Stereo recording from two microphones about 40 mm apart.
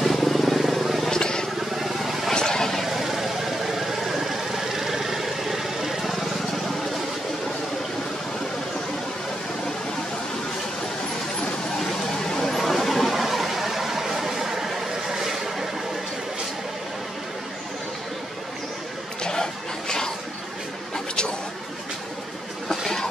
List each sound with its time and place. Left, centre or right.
0.0 s vehicle: centre
1.1 s vehicle: centre
1.8 s vehicle: centre
2.3 s vehicle: centre
2.8 s vehicle: centre
12.3 s a sound: centre
14.7 s vehicle: centre
19.2 s a sound: centre
22.7 s a sound: centre